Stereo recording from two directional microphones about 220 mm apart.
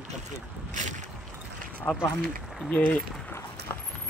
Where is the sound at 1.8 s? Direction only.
10° left (ahead or behind).